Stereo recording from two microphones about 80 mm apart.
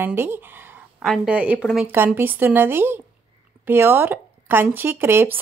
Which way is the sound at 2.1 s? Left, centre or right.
Right.